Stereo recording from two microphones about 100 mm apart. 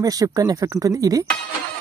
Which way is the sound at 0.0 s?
35° right (ahead or behind).